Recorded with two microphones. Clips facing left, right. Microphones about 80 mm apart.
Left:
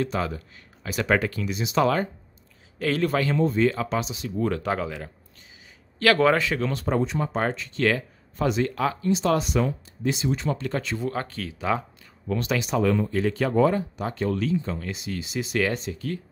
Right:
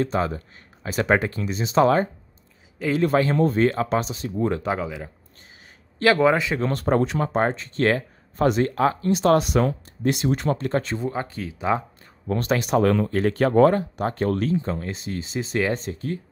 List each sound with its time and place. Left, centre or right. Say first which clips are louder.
0.0 s speech: right 3 dB; right
3.3 s speech: right 2 dB; right
4.4 s speech: right 2 dB; right
4.7 s speech: right 1 dB; centre
5.9 s speech: right 1 dB; centre
6.7 s speech: right 4 dB; right
7.3 s speech: right 5 dB; right
9.1 s speech: right 4 dB; right
10.6 s speech: right 4 dB; right
11.1 s speech: right 1 dB; centre
12.3 s speech: right 3 dB; right